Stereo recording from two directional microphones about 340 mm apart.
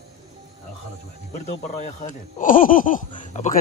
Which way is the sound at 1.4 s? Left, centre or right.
Left.